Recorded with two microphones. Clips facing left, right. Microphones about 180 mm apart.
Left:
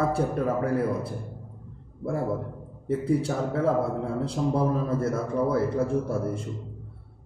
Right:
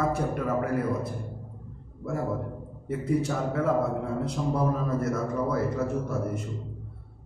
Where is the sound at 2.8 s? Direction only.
30° left (ahead or behind).